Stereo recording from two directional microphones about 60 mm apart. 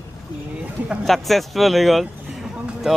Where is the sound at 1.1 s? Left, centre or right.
Centre.